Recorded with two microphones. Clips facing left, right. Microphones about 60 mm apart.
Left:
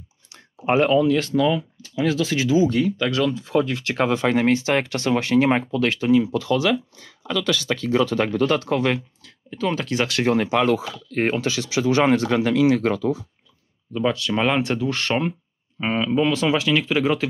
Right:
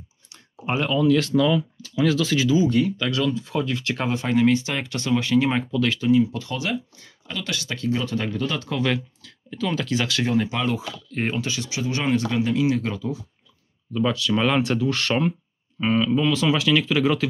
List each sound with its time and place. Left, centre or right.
0.3 s a sound: left
1.1 s speech: left
2.5 s speech: left
3.0 s speech: left
6.1 s speech: left
8.8 s speech: left
11.4 s speech: left
14.3 s speech: left